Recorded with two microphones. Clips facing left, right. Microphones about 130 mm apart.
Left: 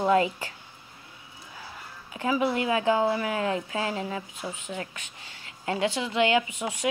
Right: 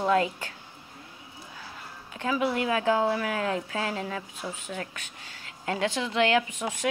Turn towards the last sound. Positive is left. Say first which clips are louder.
# even
turn(degrees=10)  # may be behind; listen again after turning